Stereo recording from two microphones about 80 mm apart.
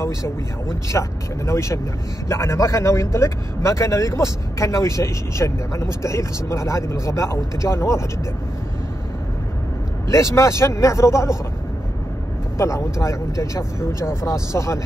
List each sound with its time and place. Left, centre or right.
0.8 s a man's voice: left
10.0 s a man's voice: left
12.5 s a man's voice: left